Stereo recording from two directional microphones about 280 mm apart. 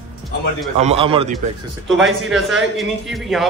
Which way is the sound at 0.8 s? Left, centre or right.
Right.